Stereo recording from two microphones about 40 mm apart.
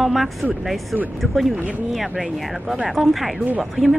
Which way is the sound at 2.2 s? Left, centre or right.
Centre.